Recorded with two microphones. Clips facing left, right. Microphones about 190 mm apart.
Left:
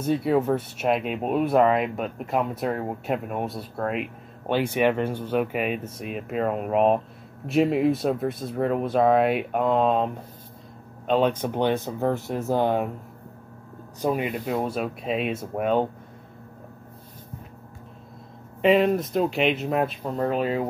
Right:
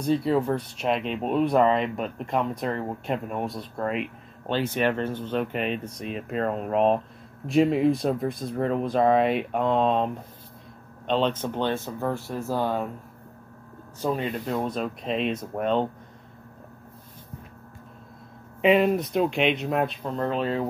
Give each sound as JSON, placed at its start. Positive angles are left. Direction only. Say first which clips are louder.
{"t": 0.0, "sound": "speech", "louder": "left 1 dB", "side_deg": 5}
{"t": 14.0, "sound": "speech", "louder": "left 2 dB", "side_deg": 10}
{"t": 18.6, "sound": "speech", "louder": "left 1 dB", "side_deg": 0}